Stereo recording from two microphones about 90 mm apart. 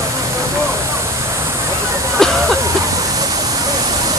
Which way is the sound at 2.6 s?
40° right (ahead or behind).